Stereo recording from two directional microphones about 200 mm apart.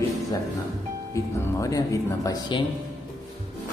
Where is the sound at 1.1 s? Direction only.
15° left (ahead or behind).